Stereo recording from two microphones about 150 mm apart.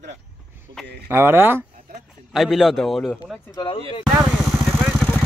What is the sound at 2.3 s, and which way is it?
Speech, centre (ahead or behind).